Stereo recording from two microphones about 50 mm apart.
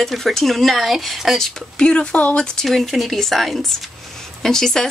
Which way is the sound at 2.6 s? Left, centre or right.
Centre.